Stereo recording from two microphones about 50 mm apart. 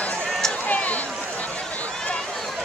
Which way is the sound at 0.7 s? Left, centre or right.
Left.